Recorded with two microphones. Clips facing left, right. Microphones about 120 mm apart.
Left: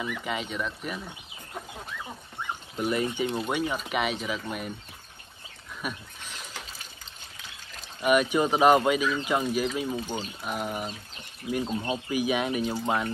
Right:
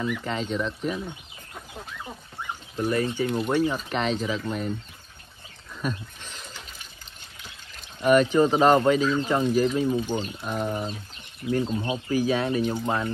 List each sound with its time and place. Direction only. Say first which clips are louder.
0.2 s speech: right 4 dB; 10° left (ahead or behind)
2.8 s speech: right 2 dB; 20° left (ahead or behind)
3.4 s speech: right 5 dB; 10° left (ahead or behind)
5.8 s speech: right 5 dB; 10° left (ahead or behind)
8.0 s speech: right 4 dB; 10° left (ahead or behind)
11.6 s speech: right 2 dB; 10° right (ahead or behind)
12.1 s speech: right 4 dB; 15° left (ahead or behind)